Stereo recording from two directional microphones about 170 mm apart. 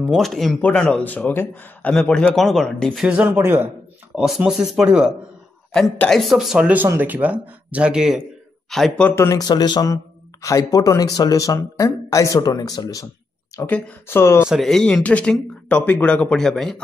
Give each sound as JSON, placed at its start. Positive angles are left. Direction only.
{"t": 0.1, "sound": "speech", "side_deg": 0}
{"t": 3.1, "sound": "speech", "side_deg": -10}
{"t": 13.6, "sound": "speech", "side_deg": 10}
{"t": 14.5, "sound": "speech", "side_deg": 0}